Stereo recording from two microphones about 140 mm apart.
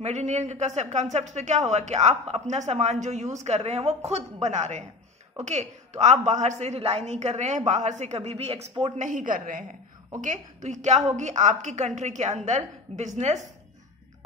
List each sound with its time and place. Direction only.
0.0 s a woman's voice: 55° right (ahead or behind); by 9.8 s 75° right (ahead or behind)
10.2 s a man's voice: 60° right (ahead or behind)